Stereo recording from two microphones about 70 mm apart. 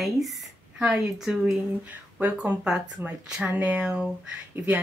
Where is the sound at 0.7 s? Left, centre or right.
Centre.